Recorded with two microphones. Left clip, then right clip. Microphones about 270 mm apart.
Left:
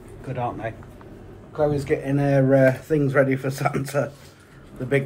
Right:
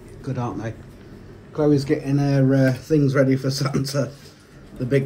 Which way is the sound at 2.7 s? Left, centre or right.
Centre.